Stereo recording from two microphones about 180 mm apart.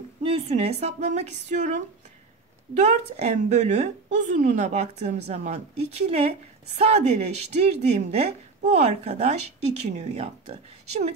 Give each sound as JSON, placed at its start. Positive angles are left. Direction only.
{"t": 0.2, "sound": "speech", "side_deg": -35}